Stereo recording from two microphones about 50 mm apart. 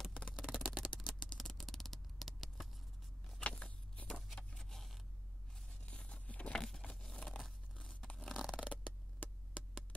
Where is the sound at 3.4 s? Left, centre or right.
Left; by 5.0 s centre.